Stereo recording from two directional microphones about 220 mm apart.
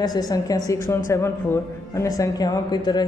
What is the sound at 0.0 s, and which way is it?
A woman's voice, 15° left (ahead or behind).